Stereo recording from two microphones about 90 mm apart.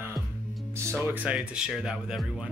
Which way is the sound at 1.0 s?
15° right (ahead or behind).